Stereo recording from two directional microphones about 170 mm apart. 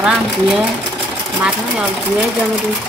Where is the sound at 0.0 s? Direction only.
Centre (ahead or behind).